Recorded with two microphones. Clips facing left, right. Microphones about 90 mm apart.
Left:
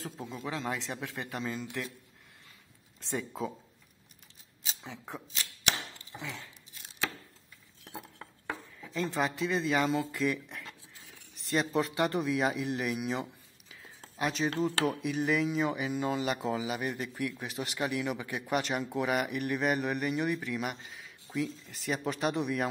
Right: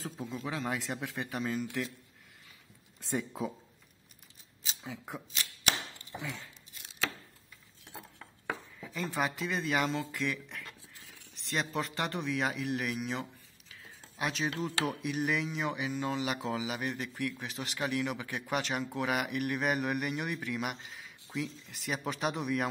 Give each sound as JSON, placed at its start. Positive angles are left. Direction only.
{"t": 0.2, "sound": "speech", "side_deg": 15}
{"t": 0.5, "sound": "a man's voice", "side_deg": -15}
{"t": 3.0, "sound": "a man's voice", "side_deg": -15}
{"t": 4.6, "sound": "a man's voice", "side_deg": -5}
{"t": 8.5, "sound": "chopping", "side_deg": -5}
{"t": 11.3, "sound": "a man's voice", "side_deg": 0}
{"t": 15.9, "sound": "speech", "side_deg": 15}
{"t": 16.2, "sound": "a man's voice", "side_deg": 0}